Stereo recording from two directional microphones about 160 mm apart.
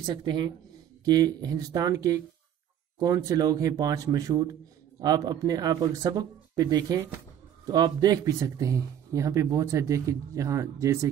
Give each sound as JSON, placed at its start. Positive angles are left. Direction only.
{"t": 0.0, "sound": "speech", "side_deg": -25}